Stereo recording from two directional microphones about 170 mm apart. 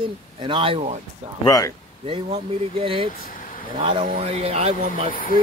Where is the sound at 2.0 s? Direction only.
35° right (ahead or behind).